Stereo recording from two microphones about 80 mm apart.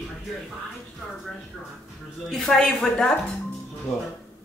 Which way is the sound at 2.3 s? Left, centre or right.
Centre.